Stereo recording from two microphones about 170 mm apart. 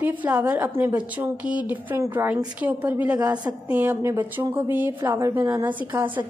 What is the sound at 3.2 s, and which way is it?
Speech, 20° right (ahead or behind).